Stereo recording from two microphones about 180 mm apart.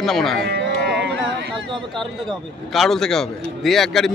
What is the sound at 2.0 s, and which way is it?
A man's voice, centre (ahead or behind).